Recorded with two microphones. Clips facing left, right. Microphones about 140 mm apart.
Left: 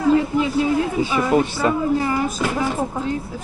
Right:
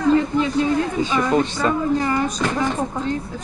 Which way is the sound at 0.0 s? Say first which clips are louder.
Even; 10° left (ahead or behind).